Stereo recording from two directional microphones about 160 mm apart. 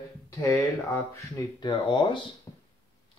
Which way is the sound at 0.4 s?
20° left (ahead or behind).